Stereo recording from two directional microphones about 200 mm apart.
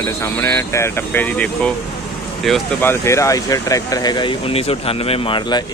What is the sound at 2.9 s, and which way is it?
Speech, 15° left (ahead or behind).